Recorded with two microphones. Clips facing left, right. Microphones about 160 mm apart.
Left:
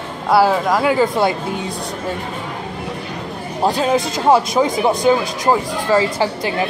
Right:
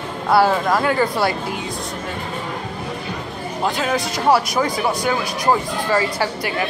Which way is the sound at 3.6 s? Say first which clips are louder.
Left 5 dB; 30° left (ahead or behind).